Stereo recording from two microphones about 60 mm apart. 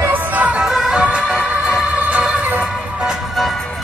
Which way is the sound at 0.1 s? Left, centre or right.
Right.